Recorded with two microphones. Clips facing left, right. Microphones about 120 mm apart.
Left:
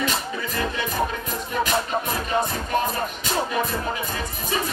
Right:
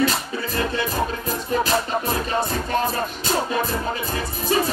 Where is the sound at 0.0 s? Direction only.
35° right (ahead or behind).